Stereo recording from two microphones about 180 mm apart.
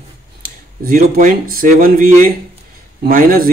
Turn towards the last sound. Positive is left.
turn(degrees=-50)  # may be behind; listen again after turning